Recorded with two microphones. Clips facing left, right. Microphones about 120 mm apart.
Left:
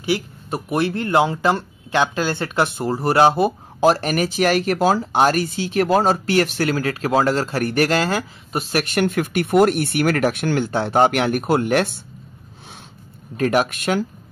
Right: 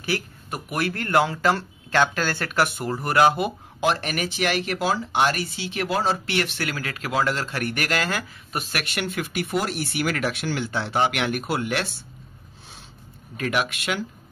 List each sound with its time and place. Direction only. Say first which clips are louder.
0.0 s speech: left 6 dB; 25° left (ahead or behind); by 11.9 s 45° left (ahead or behind)
13.4 s speech: left 7 dB; 40° left (ahead or behind)